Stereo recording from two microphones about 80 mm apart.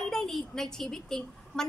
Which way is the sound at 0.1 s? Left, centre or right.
Centre.